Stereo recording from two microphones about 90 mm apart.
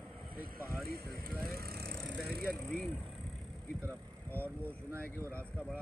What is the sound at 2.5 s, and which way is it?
Speech, 10° left (ahead or behind).